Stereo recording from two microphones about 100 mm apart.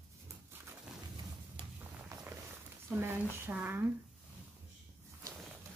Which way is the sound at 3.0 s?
20° right (ahead or behind).